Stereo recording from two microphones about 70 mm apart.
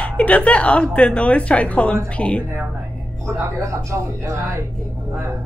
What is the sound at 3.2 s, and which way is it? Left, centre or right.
Speech, right.